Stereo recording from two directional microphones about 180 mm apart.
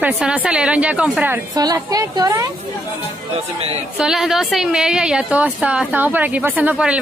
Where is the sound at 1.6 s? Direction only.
20° right (ahead or behind).